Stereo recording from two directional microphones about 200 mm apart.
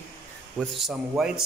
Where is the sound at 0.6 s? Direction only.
Centre (ahead or behind).